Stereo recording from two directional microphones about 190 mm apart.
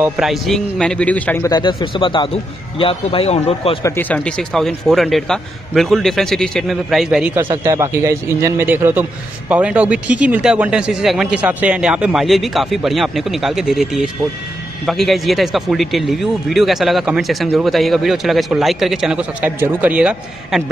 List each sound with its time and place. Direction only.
0.0 s a man's voice: centre (ahead or behind); by 3.7 s 35° left (ahead or behind)
3.8 s a man's voice: 10° left (ahead or behind)